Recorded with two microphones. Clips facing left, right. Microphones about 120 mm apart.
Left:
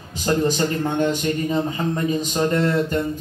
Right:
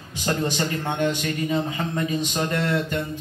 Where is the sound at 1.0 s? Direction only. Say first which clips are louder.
Left 3 dB; 40° left (ahead or behind).